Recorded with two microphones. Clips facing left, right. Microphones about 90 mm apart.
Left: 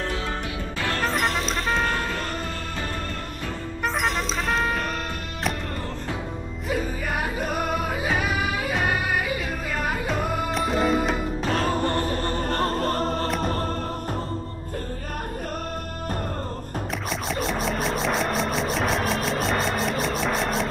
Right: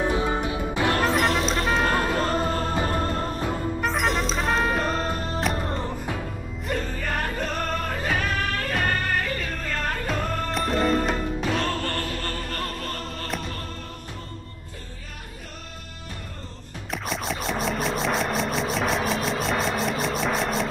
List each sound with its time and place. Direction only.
0.0 s music: 15° right (ahead or behind)
1.0 s music: centre (ahead or behind)
2.1 s music: 35° right (ahead or behind)
3.8 s music: centre (ahead or behind)
4.7 s music: 35° right (ahead or behind)
6.7 s music: 10° left (ahead or behind)
11.7 s music: 15° left (ahead or behind)
12.4 s music: 35° left (ahead or behind)
17.1 s music: centre (ahead or behind)